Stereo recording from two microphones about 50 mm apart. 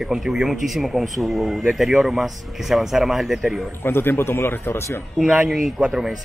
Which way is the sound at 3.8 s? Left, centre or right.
Left.